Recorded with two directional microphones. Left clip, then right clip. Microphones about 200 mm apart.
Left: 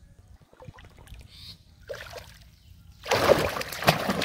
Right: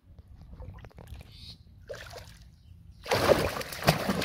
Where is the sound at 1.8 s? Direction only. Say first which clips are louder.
Left 4 dB; 15° left (ahead or behind).